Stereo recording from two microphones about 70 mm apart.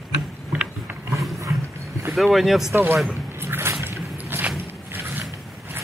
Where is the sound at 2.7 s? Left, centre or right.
Right.